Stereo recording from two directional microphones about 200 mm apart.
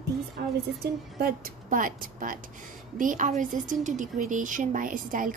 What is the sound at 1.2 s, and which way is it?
A woman's voice, 45° right (ahead or behind).